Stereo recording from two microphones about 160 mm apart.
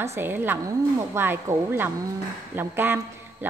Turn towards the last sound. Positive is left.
turn(degrees=-15)  # may be behind; listen again after turning